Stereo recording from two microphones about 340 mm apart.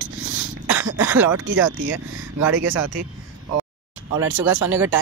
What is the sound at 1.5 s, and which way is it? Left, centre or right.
Speech, right.